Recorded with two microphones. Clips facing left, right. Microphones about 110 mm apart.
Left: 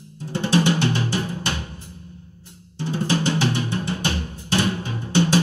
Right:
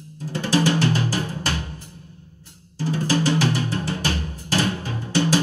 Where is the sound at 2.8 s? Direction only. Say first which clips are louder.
Right 1 dB; 25° left (ahead or behind).